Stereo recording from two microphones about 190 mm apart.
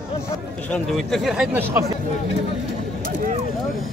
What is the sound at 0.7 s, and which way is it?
Speech, centre (ahead or behind).